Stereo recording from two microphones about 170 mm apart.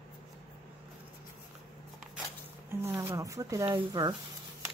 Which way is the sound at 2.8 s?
15° right (ahead or behind).